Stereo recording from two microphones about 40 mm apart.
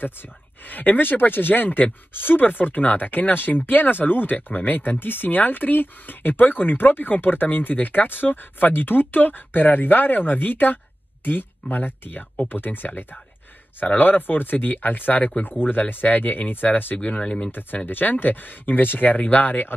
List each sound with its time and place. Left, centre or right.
0.0 s speech: left
17.2 s speech: left
17.5 s speech: left